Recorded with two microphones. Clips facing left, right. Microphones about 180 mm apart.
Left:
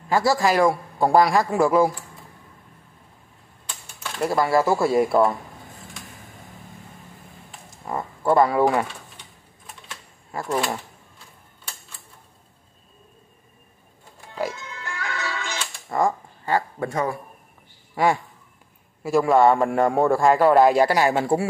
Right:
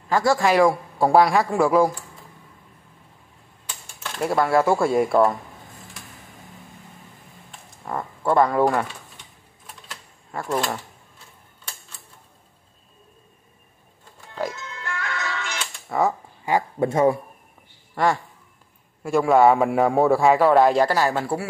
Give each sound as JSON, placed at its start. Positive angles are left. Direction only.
{"t": 0.1, "sound": "a man's voice", "side_deg": 5}
{"t": 4.2, "sound": "a man's voice", "side_deg": 0}
{"t": 7.8, "sound": "speech", "side_deg": 0}
{"t": 10.3, "sound": "a man's voice", "side_deg": 5}
{"t": 14.3, "sound": "music", "side_deg": 10}
{"t": 15.9, "sound": "mechanisms", "side_deg": -5}
{"t": 16.4, "sound": "speech", "side_deg": -20}
{"t": 17.9, "sound": "a man's voice", "side_deg": 10}